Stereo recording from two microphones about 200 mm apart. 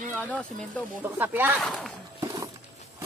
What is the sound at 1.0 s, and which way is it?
Speech, 10° right (ahead or behind).